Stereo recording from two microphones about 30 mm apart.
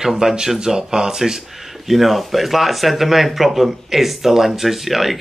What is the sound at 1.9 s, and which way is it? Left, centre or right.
Speech, centre.